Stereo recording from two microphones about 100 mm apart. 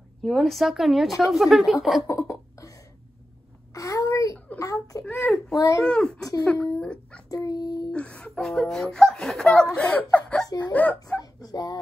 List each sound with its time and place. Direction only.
0.2 s a woman's voice: centre (ahead or behind)
2.0 s a sound: 30° left (ahead or behind)
3.7 s a child's voice: 30° left (ahead or behind)
5.0 s speech: 10° left (ahead or behind)
7.2 s a child's voice: 35° left (ahead or behind)
7.9 s speech: 10° left (ahead or behind)
11.1 s speech: 40° left (ahead or behind)